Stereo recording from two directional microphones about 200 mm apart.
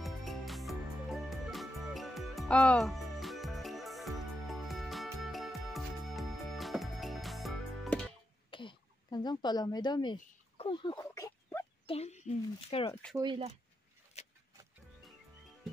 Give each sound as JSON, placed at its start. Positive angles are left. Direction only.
{"t": 0.0, "sound": "music", "side_deg": 0}
{"t": 8.5, "sound": "throat clearing", "side_deg": 25}
{"t": 10.1, "sound": "fowl", "side_deg": 25}
{"t": 11.9, "sound": "speech", "side_deg": 35}
{"t": 13.2, "sound": "speech", "side_deg": -25}
{"t": 14.2, "sound": "a sound", "side_deg": 30}